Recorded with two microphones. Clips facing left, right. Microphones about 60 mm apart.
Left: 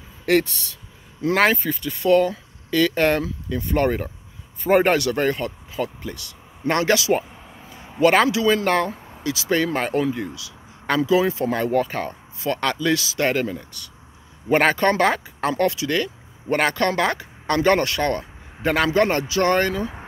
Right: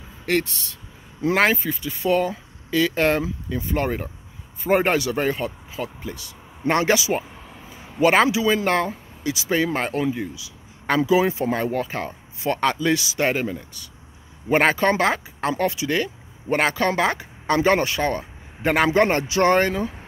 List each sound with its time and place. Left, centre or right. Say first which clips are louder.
0.2 s speech: left 4 dB; centre
11.5 s speech: left 3 dB; centre
12.4 s speech: right 1 dB; centre